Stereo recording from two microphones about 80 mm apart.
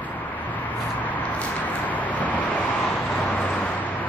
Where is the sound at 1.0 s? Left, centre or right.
Centre.